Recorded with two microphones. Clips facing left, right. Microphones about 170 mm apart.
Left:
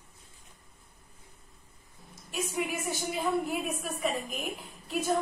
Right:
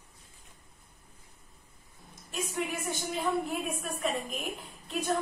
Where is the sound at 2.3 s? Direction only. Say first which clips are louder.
Left 1 dB; 5° left (ahead or behind).